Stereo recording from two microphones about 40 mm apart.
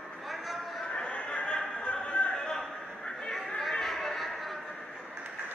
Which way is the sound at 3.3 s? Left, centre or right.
Centre.